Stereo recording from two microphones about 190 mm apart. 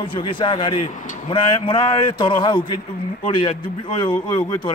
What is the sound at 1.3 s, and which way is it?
A man's voice, 25° left (ahead or behind).